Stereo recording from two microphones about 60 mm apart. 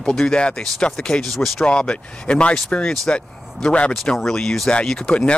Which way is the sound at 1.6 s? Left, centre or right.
Centre.